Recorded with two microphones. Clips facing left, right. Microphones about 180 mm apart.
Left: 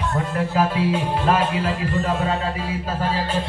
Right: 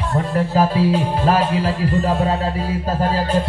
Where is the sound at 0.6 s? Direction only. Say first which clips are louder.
Right 4 dB; 35° right (ahead or behind).